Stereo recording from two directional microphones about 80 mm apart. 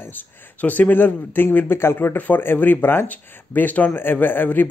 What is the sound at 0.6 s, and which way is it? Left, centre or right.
Speech, left.